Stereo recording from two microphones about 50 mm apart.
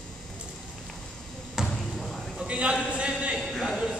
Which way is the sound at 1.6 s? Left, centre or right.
Centre.